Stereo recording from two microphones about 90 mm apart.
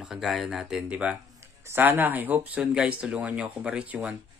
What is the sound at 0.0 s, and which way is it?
Speech, 5° right (ahead or behind).